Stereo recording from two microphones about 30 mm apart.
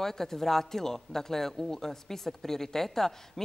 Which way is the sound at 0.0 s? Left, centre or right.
Centre.